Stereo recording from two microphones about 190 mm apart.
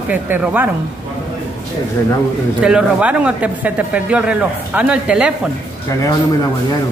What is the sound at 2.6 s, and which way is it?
Speech, 5° right (ahead or behind).